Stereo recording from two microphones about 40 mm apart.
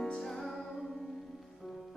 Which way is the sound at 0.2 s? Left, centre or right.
Centre.